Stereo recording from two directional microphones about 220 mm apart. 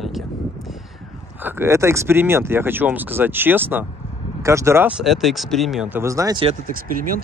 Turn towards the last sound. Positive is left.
turn(degrees=-40)  # may be behind; listen again after turning